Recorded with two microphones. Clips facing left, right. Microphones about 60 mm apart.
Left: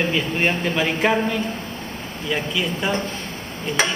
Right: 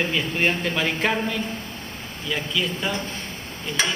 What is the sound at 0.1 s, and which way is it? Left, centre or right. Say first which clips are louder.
Speech: left 2 dB; centre.